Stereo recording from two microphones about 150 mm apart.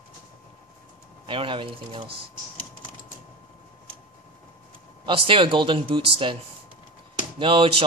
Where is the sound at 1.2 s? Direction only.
35° right (ahead or behind).